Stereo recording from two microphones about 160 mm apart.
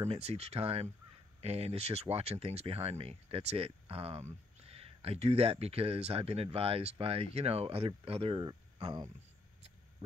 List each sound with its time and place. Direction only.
0.1 s speech: 40° right (ahead or behind)